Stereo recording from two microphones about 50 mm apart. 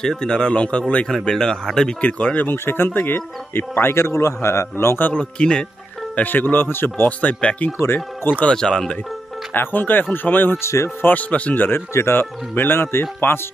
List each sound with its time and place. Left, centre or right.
0.0 s speech: centre
1.0 s speech: centre
2.0 s speech: left
2.4 s speech: left
5.1 s speech: centre
6.1 s speech: left
7.1 s speech: left
7.8 s speech: left
8.5 s speech: centre
9.5 s speech: left
10.6 s speech: left
11.0 s speech: left
11.9 s speech: left